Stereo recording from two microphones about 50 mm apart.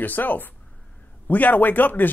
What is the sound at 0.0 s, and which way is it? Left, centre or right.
Speech, left.